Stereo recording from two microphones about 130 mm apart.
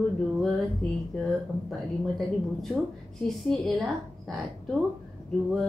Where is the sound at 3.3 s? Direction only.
Centre (ahead or behind).